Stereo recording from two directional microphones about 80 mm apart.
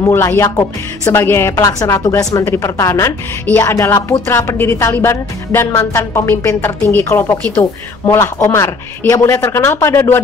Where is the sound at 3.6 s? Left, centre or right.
Left.